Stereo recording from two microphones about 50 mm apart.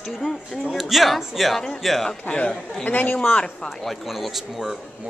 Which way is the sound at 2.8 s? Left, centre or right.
Left.